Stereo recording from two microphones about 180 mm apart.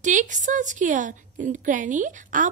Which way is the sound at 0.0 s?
45° right (ahead or behind).